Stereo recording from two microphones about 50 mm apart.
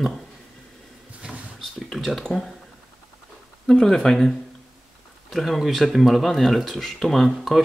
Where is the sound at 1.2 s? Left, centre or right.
Centre.